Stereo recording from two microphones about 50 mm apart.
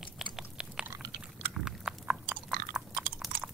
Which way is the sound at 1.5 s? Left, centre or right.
Centre.